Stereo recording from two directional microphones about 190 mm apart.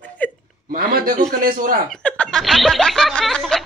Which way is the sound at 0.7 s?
45° right (ahead or behind).